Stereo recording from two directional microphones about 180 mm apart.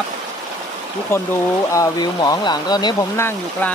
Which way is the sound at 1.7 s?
20° left (ahead or behind).